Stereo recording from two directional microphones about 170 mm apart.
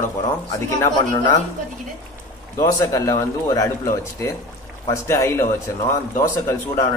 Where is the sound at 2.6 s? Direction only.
20° left (ahead or behind).